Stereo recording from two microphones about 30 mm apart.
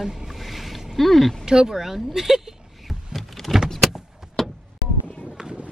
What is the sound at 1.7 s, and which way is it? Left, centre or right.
Speech, centre.